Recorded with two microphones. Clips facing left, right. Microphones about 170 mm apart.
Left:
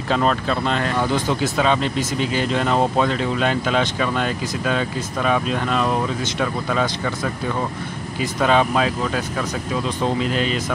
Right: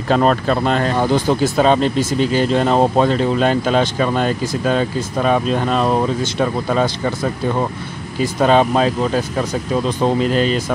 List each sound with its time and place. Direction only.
0.1 s speech: 45° right (ahead or behind)
0.8 s speech: 35° right (ahead or behind)
8.2 s speech: 35° right (ahead or behind)